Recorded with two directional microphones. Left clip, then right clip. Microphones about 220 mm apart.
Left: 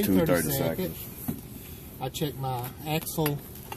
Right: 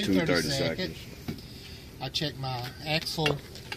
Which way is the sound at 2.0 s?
15° right (ahead or behind).